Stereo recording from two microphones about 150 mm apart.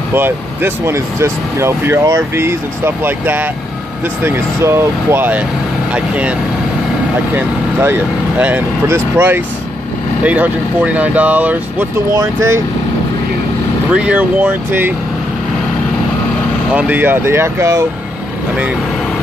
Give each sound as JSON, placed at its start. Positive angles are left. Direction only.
{"t": 0.1, "sound": "speech", "side_deg": -15}
{"t": 7.3, "sound": "speech", "side_deg": -15}
{"t": 13.9, "sound": "speech", "side_deg": -10}
{"t": 16.7, "sound": "speech", "side_deg": -10}